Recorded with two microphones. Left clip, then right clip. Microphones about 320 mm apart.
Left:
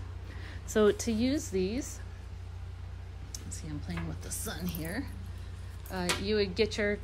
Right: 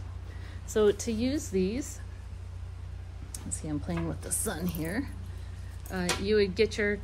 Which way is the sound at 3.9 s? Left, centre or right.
Centre.